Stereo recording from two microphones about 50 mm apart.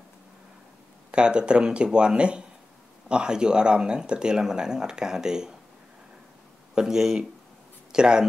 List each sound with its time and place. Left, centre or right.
1.1 s speech: centre
6.7 s speech: centre